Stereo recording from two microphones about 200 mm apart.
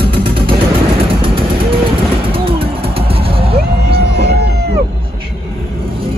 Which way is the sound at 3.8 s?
55° right (ahead or behind).